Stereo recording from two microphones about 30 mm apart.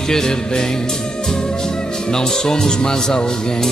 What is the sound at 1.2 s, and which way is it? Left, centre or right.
Speech, left.